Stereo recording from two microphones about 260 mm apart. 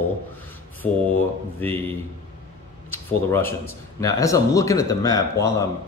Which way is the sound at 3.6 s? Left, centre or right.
Centre.